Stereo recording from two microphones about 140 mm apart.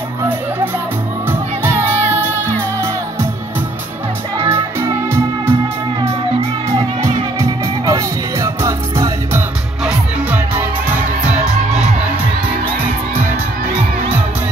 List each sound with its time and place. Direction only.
4.4 s music: 20° right (ahead or behind)
7.3 s music: 25° right (ahead or behind)